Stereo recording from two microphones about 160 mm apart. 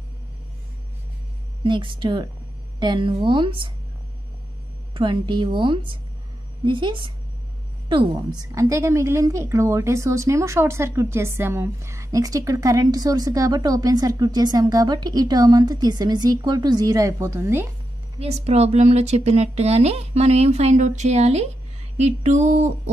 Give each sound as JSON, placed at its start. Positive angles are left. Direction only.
{"t": 1.6, "sound": "a woman's voice", "side_deg": -30}
{"t": 4.9, "sound": "a woman's voice", "side_deg": -30}
{"t": 18.2, "sound": "speech", "side_deg": -40}